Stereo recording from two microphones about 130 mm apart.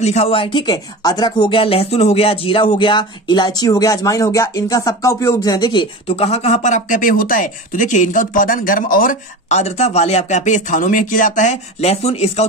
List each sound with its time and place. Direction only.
0.0 s speech: 55° left (ahead or behind); by 6.1 s 35° left (ahead or behind)
6.1 s speech: 55° left (ahead or behind)